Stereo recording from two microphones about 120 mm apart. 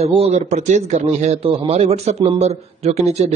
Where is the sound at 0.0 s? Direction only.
55° right (ahead or behind).